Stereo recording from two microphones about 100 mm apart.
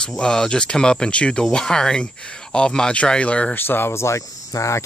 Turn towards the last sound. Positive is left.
turn(degrees=30)  # may be behind; listen again after turning